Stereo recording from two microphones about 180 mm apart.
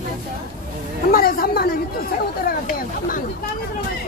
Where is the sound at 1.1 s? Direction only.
55° left (ahead or behind).